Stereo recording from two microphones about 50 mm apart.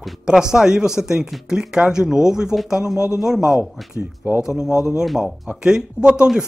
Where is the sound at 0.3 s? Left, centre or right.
Centre.